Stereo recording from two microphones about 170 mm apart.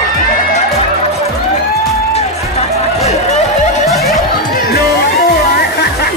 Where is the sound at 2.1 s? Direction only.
40° left (ahead or behind).